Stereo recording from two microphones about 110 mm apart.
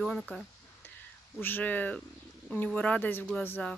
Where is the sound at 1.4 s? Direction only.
15° left (ahead or behind).